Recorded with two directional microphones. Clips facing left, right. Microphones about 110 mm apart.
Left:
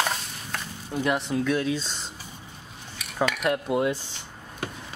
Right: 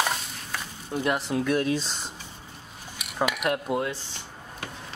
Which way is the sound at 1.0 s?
5° right (ahead or behind).